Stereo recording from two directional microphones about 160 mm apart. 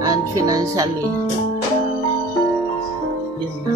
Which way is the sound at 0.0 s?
20° right (ahead or behind).